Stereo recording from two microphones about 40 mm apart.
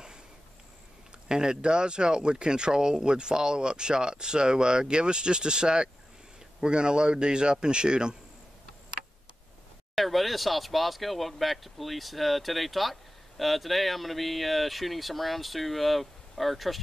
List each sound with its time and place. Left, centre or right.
1.3 s speech: centre
9.9 s speech: centre